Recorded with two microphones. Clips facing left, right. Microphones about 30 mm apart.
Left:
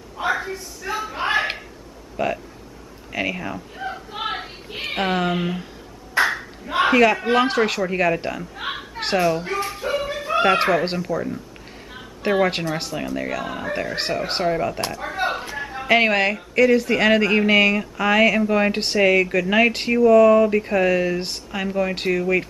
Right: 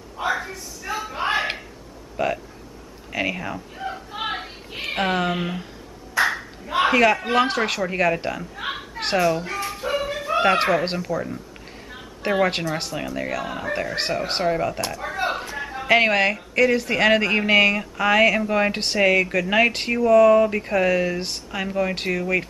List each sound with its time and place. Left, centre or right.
0.2 s a sound: centre
6.2 s ping: left
6.8 s speech: centre
9.7 s music: centre
12.2 s speech: centre
14.9 s a sound: centre
15.1 s speech: centre